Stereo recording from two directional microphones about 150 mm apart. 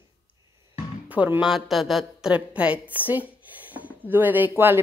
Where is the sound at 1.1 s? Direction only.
10° right (ahead or behind).